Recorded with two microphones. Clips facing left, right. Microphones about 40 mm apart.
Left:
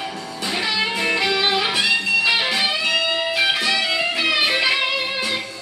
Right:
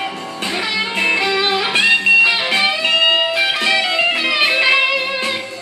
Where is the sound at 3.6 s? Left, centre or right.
Right.